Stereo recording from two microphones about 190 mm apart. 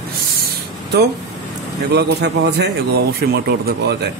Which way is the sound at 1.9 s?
60° right (ahead or behind).